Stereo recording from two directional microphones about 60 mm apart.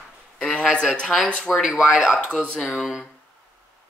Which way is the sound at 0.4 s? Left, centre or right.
Centre.